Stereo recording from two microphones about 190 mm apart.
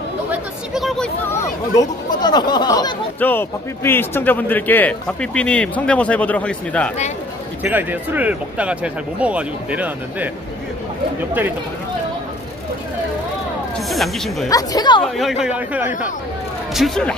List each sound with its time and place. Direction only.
0.3 s a sound: centre (ahead or behind)
1.3 s speech: 15° left (ahead or behind)
3.2 s a man's voice: 10° left (ahead or behind)
7.6 s speech: 10° right (ahead or behind)
13.8 s speech: centre (ahead or behind)
14.5 s speech: 20° left (ahead or behind)
15.0 s speech: centre (ahead or behind)